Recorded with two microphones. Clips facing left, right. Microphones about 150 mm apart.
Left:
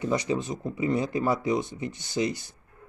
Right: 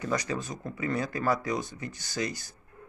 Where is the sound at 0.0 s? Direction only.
25° left (ahead or behind).